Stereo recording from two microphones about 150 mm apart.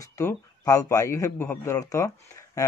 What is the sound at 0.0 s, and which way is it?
Speech, 20° left (ahead or behind).